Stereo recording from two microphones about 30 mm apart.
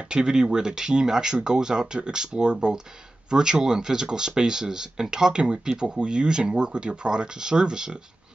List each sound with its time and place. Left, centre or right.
0.1 s speech: right